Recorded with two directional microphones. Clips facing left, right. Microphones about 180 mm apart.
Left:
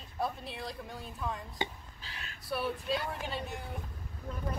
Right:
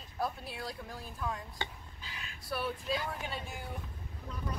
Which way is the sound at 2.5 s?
Centre (ahead or behind).